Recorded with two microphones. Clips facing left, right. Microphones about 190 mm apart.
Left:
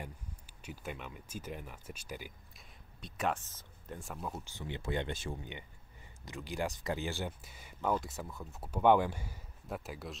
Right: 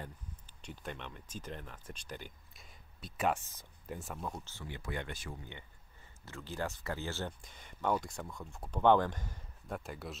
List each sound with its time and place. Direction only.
0.0 s speech: 10° left (ahead or behind)
3.0 s speech: 5° right (ahead or behind)
4.5 s speech: 20° left (ahead or behind); by 10.1 s centre (ahead or behind)